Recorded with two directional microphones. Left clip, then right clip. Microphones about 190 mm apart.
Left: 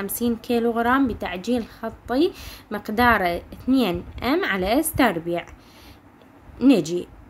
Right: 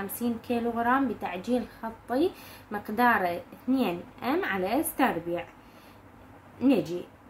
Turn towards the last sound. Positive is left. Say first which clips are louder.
# left 7 dB
turn(degrees=55)  # may be behind; listen again after turning